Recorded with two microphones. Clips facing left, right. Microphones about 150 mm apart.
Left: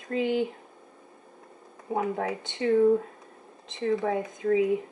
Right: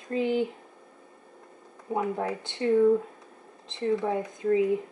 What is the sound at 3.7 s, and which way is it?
Speech, centre (ahead or behind).